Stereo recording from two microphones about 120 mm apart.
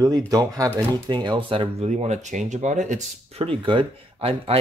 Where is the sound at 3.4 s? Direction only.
45° right (ahead or behind).